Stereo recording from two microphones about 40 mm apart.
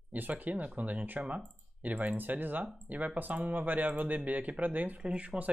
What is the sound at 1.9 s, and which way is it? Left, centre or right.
Speech, right.